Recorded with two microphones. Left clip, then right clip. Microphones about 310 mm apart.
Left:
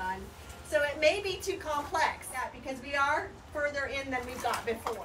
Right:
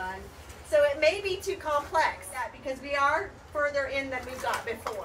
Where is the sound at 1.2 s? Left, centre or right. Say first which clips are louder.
Right 3 dB; centre.